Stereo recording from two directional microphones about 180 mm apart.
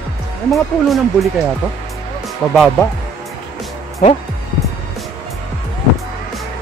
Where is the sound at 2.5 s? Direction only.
Centre (ahead or behind).